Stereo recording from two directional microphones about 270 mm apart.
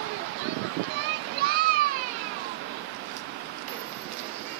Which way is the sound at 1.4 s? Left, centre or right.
Right.